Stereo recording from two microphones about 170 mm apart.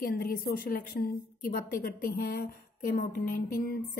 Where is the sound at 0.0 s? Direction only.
60° left (ahead or behind).